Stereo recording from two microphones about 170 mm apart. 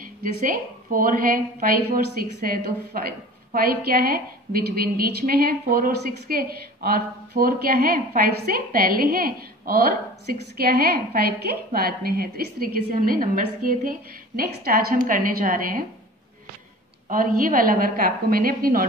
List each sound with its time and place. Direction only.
0.0 s a woman's voice: 55° right (ahead or behind)
17.1 s a woman's voice: 55° right (ahead or behind)